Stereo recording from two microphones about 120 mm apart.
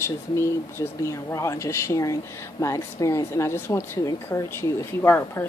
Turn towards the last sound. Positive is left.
turn(degrees=20)  # may be behind; listen again after turning